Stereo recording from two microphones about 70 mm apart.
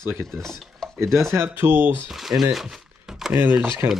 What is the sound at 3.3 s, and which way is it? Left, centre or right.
Speech, right.